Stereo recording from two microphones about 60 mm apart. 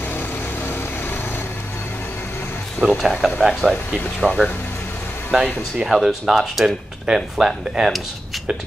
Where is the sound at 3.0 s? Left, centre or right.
Centre.